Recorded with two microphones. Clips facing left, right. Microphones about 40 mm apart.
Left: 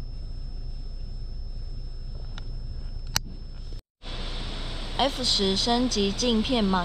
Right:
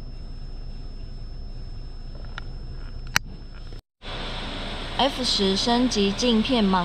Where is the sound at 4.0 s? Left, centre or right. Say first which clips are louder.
Right 5 dB; right.